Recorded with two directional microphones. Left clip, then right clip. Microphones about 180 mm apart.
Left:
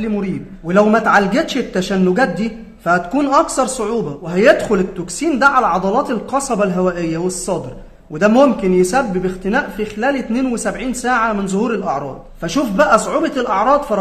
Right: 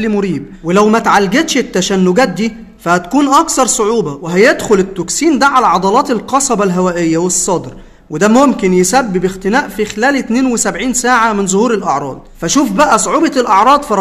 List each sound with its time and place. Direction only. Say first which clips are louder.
0.0 s speech: right 7 dB; 25° right (ahead or behind)
0.7 s a man's voice: right 3 dB; 15° right (ahead or behind)